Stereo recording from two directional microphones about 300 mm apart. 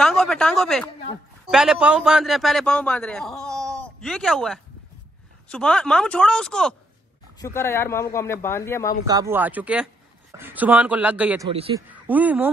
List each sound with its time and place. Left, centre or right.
0.0 s a sound: centre
1.5 s a man's voice: centre
9.0 s a man's voice: centre
11.5 s speech: centre
11.9 s speech: centre